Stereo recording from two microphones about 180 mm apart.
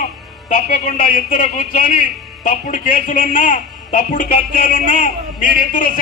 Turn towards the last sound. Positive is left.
turn(degrees=50)  # may be behind; listen again after turning